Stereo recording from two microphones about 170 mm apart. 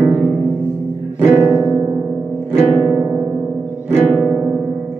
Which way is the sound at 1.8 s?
20° right (ahead or behind).